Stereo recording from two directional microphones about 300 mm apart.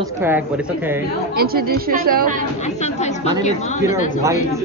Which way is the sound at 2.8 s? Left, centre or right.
Left.